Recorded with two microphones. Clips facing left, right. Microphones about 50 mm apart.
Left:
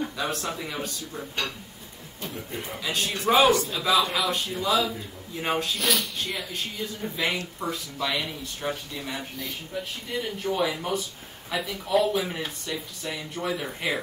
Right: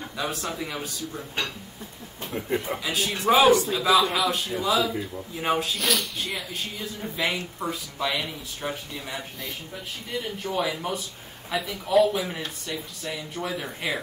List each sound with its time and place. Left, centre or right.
0.0 s speech: centre
2.3 s a man's voice: right
2.8 s speech: centre
10.4 s speech: centre